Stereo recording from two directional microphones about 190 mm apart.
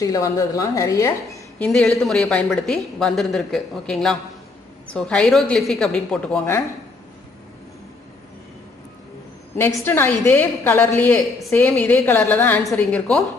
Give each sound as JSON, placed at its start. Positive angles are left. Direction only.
{"t": 0.0, "sound": "a woman's voice", "side_deg": 15}
{"t": 1.6, "sound": "a woman's voice", "side_deg": 5}
{"t": 9.6, "sound": "a woman's voice", "side_deg": 15}